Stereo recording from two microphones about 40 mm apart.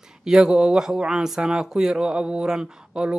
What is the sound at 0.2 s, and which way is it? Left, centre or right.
Speech, centre.